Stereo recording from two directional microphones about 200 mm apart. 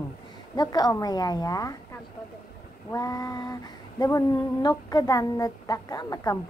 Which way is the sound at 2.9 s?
15° left (ahead or behind).